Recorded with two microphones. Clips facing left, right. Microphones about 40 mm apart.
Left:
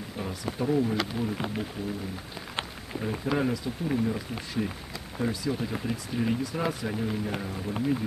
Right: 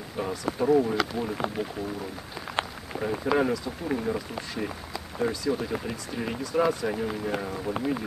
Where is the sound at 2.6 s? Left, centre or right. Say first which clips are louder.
Right 5 dB; centre.